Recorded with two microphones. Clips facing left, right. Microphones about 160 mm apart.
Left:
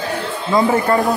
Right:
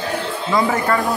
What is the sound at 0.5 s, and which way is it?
Speech, 25° left (ahead or behind).